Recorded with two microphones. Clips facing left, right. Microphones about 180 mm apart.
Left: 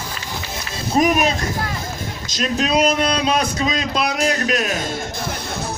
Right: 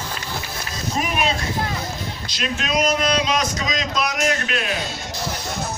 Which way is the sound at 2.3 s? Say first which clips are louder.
Left 6 dB; 40° left (ahead or behind).